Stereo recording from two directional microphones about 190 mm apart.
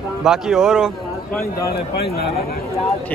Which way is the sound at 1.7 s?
55° left (ahead or behind).